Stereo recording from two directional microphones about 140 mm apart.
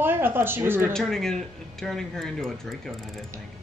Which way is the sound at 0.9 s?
5° left (ahead or behind).